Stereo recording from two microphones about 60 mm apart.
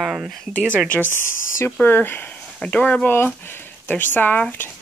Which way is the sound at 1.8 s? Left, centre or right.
Left.